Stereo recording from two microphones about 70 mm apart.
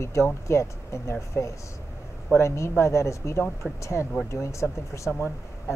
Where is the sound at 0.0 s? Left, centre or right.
Left.